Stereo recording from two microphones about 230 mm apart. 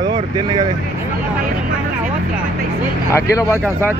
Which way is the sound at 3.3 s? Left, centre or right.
Centre.